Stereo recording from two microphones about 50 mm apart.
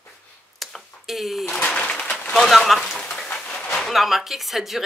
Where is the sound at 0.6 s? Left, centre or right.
Centre.